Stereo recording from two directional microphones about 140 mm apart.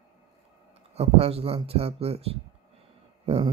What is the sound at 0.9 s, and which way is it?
Speech, 45° right (ahead or behind).